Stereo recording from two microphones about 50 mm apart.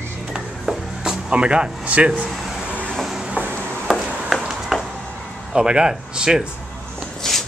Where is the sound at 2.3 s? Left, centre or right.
Centre.